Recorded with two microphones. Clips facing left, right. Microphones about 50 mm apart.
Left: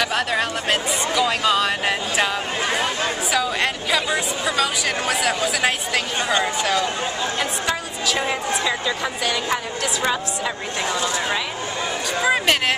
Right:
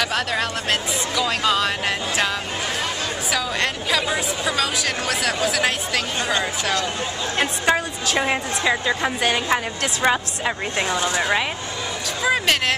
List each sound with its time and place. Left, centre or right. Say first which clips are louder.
0.0 s a woman's voice: left 1 dB; centre
7.3 s a woman's voice: right 4 dB; right
9.2 s a woman's voice: right 2 dB; right
10.0 s speech: right 5 dB; right
12.2 s speech: left 1 dB; centre